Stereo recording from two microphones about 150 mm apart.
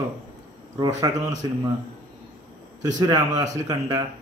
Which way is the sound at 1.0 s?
25° right (ahead or behind).